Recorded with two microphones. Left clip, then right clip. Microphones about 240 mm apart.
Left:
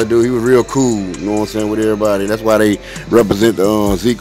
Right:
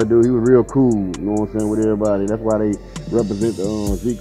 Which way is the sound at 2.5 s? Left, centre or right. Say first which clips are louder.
Left 7 dB; left.